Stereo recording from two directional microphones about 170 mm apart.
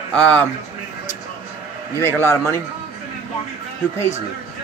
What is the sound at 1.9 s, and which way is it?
Speech, 15° left (ahead or behind).